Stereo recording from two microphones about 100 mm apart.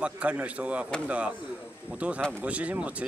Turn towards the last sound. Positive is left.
turn(degrees=-15)  # may be behind; listen again after turning